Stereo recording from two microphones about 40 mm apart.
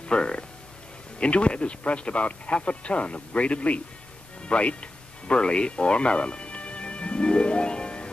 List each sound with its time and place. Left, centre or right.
0.1 s speech: left
5.3 s music: left